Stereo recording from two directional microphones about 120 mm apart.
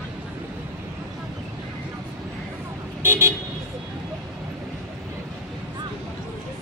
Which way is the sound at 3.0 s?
20° right (ahead or behind).